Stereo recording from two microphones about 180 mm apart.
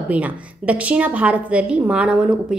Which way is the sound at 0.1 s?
5° right (ahead or behind).